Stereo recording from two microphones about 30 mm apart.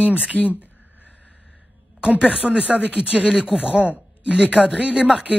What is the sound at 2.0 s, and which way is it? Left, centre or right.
Speech, right.